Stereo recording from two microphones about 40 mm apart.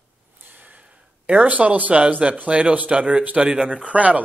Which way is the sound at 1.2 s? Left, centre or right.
Right.